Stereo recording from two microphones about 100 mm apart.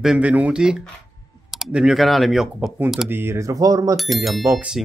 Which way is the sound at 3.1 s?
20° right (ahead or behind).